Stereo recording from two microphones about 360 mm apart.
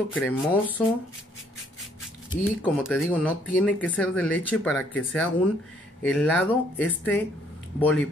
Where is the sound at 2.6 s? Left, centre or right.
Centre.